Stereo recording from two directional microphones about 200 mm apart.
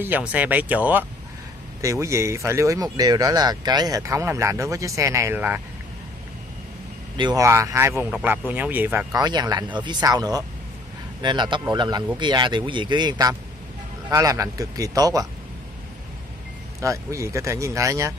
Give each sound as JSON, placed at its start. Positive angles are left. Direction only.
{"t": 0.0, "sound": "speech", "side_deg": -10}
{"t": 7.2, "sound": "speech", "side_deg": -20}
{"t": 16.8, "sound": "speech", "side_deg": -15}